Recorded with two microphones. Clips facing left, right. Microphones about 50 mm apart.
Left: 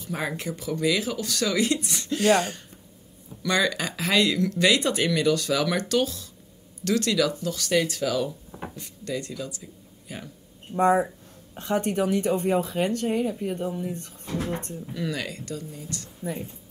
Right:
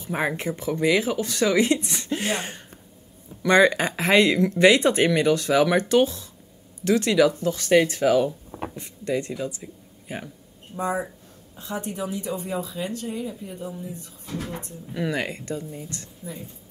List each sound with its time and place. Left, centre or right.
0.0 s speech: right
10.8 s speech: left
14.2 s a sound: left
14.5 s speech: left
15.0 s speech: right